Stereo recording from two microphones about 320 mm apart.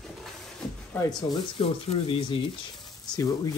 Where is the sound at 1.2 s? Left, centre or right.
Centre.